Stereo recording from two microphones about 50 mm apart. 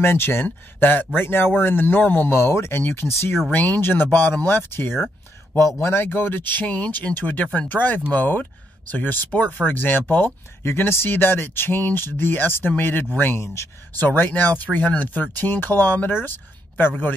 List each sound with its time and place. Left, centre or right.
0.0 s speech: left
2.3 s speech: left
3.5 s speech: left
3.8 s speech: left
6.0 s speech: left